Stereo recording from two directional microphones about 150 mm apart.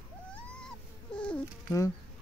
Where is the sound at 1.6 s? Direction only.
20° left (ahead or behind).